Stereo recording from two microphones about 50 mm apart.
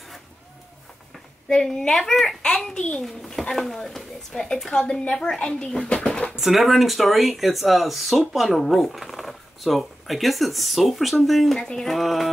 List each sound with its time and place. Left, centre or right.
1.5 s speech: centre
3.0 s speech: centre
6.3 s speech: centre
11.5 s speech: centre
11.9 s speech: centre